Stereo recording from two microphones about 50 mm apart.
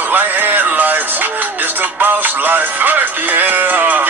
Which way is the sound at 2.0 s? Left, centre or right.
Right.